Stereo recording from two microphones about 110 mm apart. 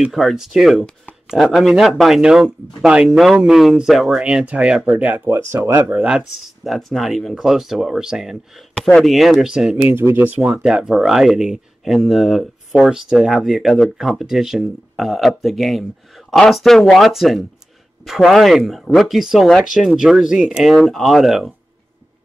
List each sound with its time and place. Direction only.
0.0 s speech: centre (ahead or behind)
9.9 s speech: 20° right (ahead or behind); by 21.5 s centre (ahead or behind)